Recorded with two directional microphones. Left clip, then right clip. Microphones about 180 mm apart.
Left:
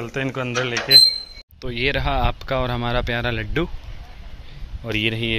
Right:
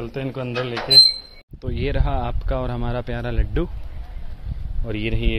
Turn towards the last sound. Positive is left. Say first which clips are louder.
# left 4 dB
turn(degrees=5)  # may be behind; listen again after turning